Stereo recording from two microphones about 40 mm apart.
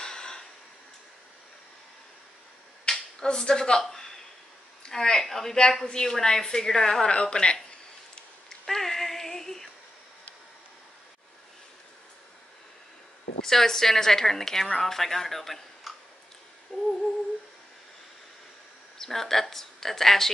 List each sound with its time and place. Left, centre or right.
0.0 s a sound: centre
2.9 s a sound: centre
4.8 s a woman's voice: centre
7.1 s speech: left
8.6 s child singing: centre
13.4 s a woman's voice: centre
16.7 s humming: centre
18.9 s a woman's voice: centre